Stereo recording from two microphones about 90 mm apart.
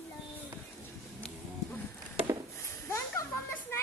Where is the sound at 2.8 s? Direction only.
30° left (ahead or behind).